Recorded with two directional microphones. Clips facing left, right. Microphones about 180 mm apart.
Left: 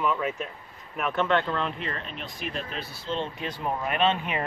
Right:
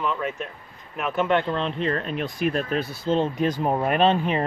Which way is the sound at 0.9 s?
5° right (ahead or behind).